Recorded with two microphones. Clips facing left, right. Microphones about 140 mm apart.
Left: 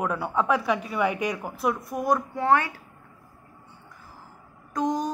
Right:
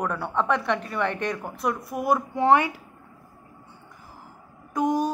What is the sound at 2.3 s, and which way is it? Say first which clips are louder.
Speech: right 5 dB; 20° right (ahead or behind).